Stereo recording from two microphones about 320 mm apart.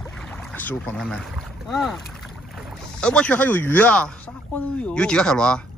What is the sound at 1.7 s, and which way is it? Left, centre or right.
Speech, centre.